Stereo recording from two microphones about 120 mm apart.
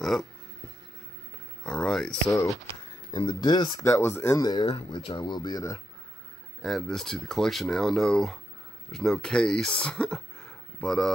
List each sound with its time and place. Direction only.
0.0 s speech: centre (ahead or behind)
1.6 s a sound: 5° left (ahead or behind)
2.7 s speech: 35° left (ahead or behind)
3.8 s speech: 25° left (ahead or behind)
4.4 s speech: 35° left (ahead or behind)
6.6 s speech: centre (ahead or behind)